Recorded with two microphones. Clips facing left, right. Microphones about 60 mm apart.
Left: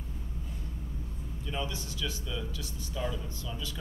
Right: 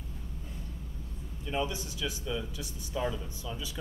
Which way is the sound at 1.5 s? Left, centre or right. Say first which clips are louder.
Right 4 dB; centre.